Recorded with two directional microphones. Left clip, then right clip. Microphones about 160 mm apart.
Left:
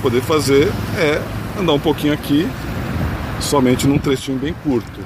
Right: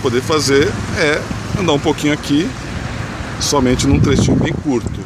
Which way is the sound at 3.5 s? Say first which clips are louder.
Even; 5° left (ahead or behind).